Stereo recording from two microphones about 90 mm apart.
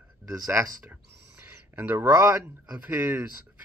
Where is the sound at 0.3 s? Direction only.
30° right (ahead or behind).